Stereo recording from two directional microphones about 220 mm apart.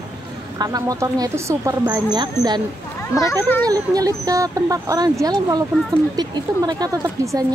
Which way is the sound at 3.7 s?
15° right (ahead or behind).